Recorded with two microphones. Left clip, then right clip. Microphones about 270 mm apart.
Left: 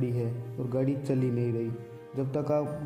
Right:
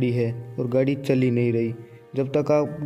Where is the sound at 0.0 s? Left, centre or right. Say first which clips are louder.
Right 8 dB; right.